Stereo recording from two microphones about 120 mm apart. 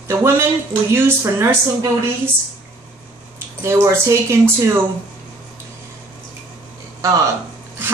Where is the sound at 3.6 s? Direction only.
20° right (ahead or behind).